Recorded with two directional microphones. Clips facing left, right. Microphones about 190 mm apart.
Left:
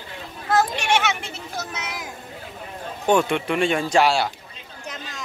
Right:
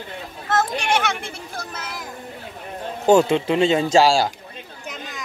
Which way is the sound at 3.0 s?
25° right (ahead or behind).